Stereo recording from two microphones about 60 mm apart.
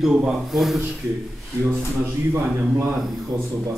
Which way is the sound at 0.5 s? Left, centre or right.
Centre.